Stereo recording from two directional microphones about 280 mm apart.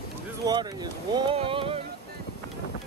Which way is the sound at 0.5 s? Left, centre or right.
Centre.